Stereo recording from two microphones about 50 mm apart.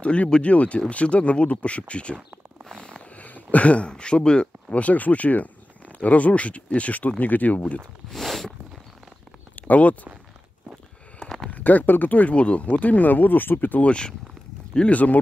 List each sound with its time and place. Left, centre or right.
0.0 s speech: left
3.2 s a sound: left
3.5 s speech: left
8.1 s a sound: centre
9.6 s speech: left
11.2 s a sound: centre
11.5 s speech: left
13.8 s speech: centre
14.9 s speech: left